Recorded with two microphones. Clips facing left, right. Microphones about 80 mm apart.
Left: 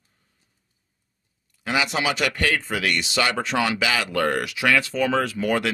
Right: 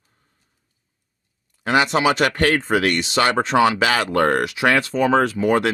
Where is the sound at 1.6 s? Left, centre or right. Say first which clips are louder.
Right 6 dB; right.